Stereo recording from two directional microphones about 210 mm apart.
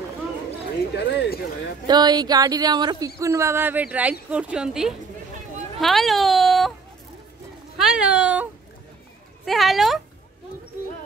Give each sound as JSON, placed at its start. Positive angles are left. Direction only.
{"t": 0.9, "sound": "speech", "side_deg": 55}
{"t": 1.9, "sound": "speech", "side_deg": -20}
{"t": 7.7, "sound": "a sound", "side_deg": -5}
{"t": 9.4, "sound": "speech", "side_deg": 0}